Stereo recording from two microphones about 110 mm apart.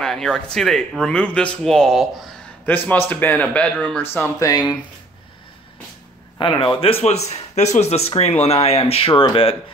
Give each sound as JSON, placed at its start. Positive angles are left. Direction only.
{"t": 0.0, "sound": "speech", "side_deg": 5}
{"t": 2.6, "sound": "speech", "side_deg": 15}
{"t": 4.1, "sound": "speech", "side_deg": 25}
{"t": 6.4, "sound": "speech", "side_deg": 45}